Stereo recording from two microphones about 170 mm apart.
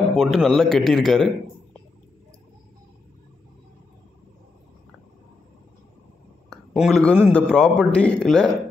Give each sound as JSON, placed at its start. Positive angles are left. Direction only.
{"t": 0.1, "sound": "speech", "side_deg": 0}
{"t": 6.5, "sound": "speech", "side_deg": 0}